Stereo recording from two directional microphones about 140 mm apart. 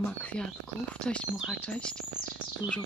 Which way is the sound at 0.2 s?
10° left (ahead or behind).